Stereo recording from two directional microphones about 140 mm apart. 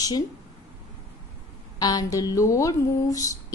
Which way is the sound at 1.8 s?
25° left (ahead or behind).